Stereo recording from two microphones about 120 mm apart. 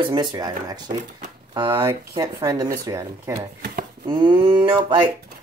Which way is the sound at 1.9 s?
30° right (ahead or behind).